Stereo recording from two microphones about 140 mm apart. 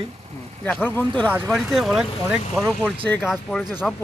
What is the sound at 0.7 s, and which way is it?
Speech, 10° left (ahead or behind).